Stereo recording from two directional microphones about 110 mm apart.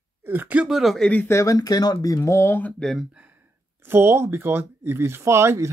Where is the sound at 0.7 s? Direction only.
Centre (ahead or behind).